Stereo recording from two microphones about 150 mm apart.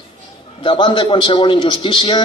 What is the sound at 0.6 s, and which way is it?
A man's voice, 35° left (ahead or behind).